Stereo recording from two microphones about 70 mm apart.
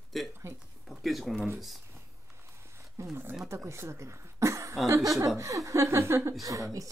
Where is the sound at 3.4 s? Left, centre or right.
Right.